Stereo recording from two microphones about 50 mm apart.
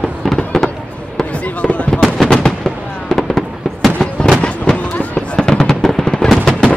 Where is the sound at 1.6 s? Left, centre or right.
Left.